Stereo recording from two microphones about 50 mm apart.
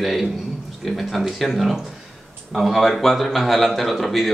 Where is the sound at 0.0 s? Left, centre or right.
Centre.